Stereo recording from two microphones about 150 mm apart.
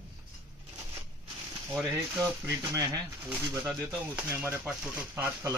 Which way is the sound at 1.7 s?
15° right (ahead or behind).